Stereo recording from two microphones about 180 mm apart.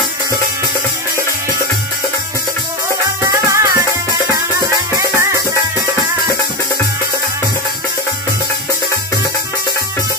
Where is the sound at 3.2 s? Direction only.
15° right (ahead or behind).